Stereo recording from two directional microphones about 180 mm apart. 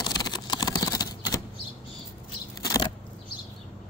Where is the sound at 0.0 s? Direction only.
25° left (ahead or behind).